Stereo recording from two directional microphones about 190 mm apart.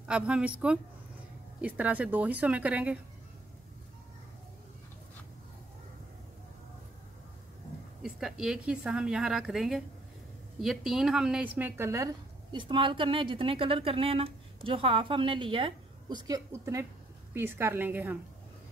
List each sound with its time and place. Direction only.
0.1 s speech: 5° right (ahead or behind)
8.0 s speech: centre (ahead or behind)